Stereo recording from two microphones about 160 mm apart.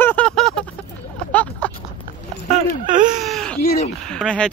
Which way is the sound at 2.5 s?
55° right (ahead or behind).